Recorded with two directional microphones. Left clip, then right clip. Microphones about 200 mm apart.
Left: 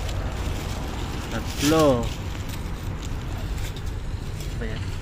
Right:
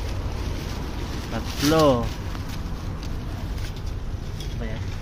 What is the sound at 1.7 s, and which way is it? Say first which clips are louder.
Speech: right 1 dB; 25° right (ahead or behind).